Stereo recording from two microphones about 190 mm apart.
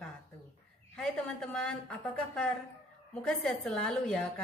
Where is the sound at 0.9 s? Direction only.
5° left (ahead or behind).